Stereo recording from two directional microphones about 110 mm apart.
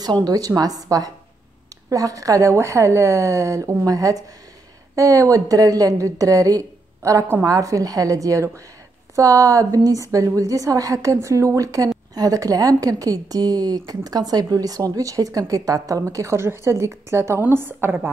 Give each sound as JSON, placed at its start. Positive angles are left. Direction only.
{"t": 0.0, "sound": "a woman's voice", "side_deg": -35}